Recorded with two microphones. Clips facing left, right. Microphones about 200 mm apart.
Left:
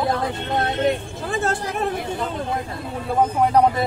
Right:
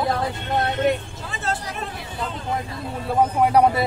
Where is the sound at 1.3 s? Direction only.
50° left (ahead or behind).